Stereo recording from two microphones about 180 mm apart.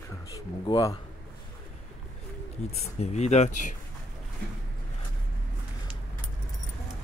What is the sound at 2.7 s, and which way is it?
Speech, 35° left (ahead or behind).